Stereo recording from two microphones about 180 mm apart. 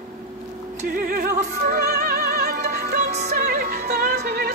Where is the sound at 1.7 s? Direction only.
55° right (ahead or behind).